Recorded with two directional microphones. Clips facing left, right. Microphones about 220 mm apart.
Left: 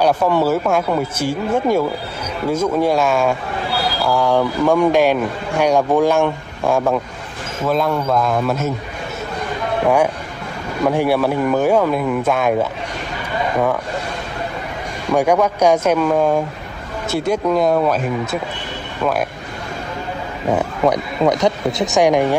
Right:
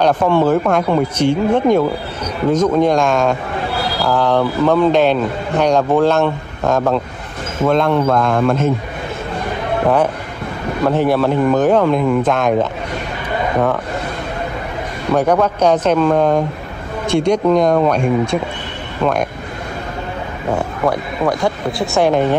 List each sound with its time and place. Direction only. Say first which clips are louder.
0.0 s speech: right 2 dB; 10° left (ahead or behind)
10.9 s speech: right 2 dB; 10° left (ahead or behind)
15.1 s speech: right 1 dB; 10° left (ahead or behind)
20.5 s speech: left 1 dB; 20° left (ahead or behind)